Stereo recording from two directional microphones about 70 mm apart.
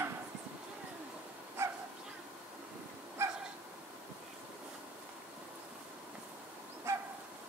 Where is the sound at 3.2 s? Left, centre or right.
Right.